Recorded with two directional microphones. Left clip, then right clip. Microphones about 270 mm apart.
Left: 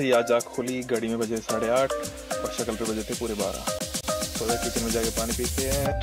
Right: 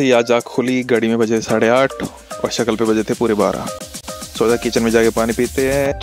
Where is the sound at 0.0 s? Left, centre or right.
Right.